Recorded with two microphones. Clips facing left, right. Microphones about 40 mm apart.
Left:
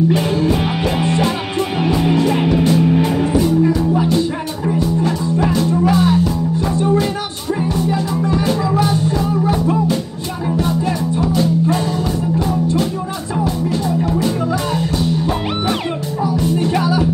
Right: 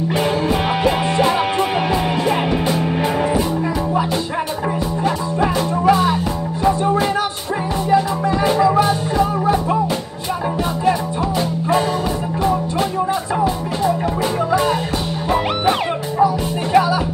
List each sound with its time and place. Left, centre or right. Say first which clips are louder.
0.1 s music: left 2 dB; centre
8.5 s music: right 3 dB; right
10.9 s music: even; right